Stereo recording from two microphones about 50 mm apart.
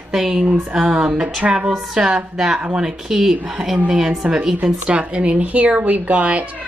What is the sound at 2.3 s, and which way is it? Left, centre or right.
A woman's voice, centre.